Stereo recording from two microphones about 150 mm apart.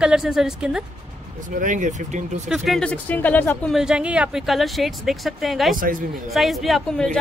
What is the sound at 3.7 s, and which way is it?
Speech, 5° right (ahead or behind).